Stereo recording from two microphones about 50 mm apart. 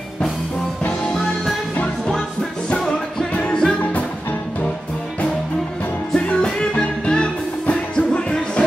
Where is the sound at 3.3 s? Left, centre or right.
Left.